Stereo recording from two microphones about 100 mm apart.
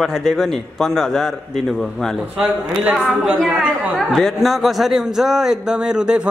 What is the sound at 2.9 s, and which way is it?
Speech, 10° right (ahead or behind).